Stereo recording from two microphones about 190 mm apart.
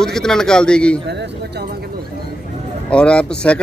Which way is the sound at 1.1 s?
65° right (ahead or behind).